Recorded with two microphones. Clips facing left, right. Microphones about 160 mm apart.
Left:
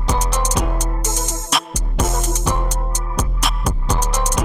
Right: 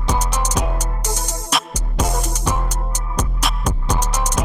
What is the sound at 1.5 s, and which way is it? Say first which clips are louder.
Music: even; centre (ahead or behind).